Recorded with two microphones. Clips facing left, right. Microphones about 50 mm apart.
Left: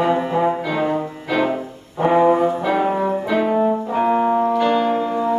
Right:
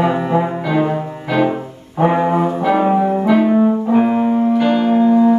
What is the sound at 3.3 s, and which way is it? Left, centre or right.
Brass instrument, centre.